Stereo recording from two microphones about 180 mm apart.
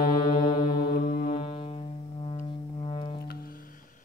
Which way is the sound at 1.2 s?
30° left (ahead or behind).